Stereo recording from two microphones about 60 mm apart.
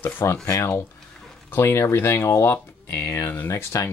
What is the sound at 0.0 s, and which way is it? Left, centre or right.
Speech, left.